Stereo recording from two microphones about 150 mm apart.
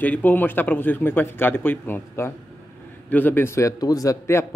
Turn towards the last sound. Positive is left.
turn(degrees=20)  # may be behind; listen again after turning